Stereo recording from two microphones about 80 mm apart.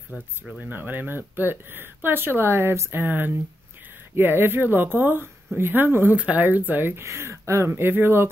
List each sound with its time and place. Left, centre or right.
0.7 s speech: right